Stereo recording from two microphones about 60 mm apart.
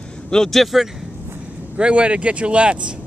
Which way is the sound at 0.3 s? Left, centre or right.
Centre.